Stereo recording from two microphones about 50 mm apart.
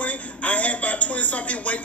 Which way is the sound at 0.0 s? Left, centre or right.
Left.